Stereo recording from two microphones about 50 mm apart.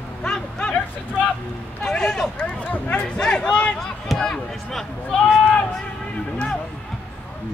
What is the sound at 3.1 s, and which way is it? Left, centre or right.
Speech, centre.